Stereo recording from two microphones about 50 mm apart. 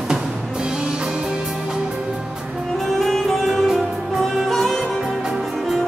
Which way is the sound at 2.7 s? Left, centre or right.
Centre.